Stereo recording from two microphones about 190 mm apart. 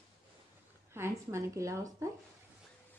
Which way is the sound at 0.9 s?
15° right (ahead or behind).